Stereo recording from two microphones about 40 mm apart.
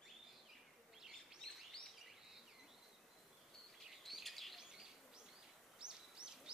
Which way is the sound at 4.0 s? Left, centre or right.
Centre.